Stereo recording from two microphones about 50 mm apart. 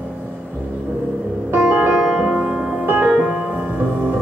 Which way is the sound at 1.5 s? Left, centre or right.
Right.